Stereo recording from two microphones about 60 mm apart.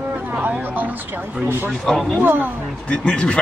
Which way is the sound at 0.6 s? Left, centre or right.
Right.